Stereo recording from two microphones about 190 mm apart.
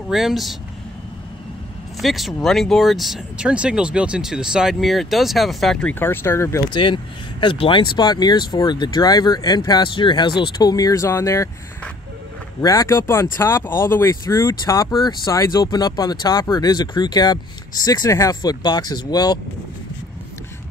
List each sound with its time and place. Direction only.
0.1 s speech: centre (ahead or behind)
2.0 s speech: centre (ahead or behind); by 6.8 s 15° left (ahead or behind)
6.8 s speech: 25° left (ahead or behind)